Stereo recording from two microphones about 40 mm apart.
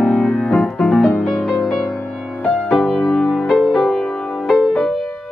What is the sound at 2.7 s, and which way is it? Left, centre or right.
Music, centre.